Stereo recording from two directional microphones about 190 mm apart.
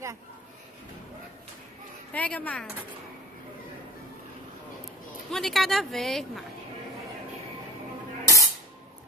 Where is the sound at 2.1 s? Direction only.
10° left (ahead or behind).